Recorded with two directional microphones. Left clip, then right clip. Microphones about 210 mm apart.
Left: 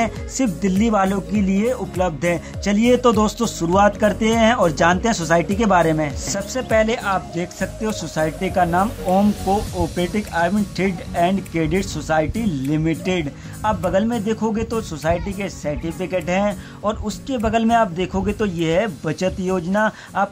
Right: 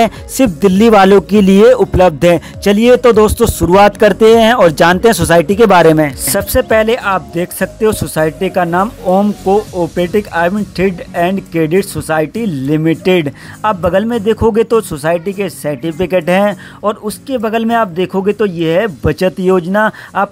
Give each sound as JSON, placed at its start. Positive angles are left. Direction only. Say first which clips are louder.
{"t": 0.0, "sound": "speech", "louder": "right 10 dB", "side_deg": -40}